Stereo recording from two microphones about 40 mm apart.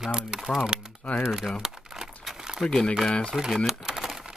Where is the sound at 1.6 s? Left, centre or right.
Centre.